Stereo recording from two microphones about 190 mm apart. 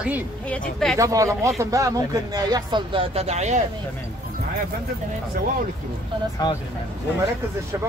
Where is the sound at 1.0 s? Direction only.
15° right (ahead or behind); by 3.6 s 35° right (ahead or behind).